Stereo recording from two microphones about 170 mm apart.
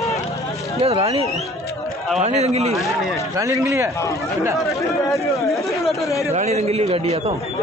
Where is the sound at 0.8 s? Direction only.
35° right (ahead or behind).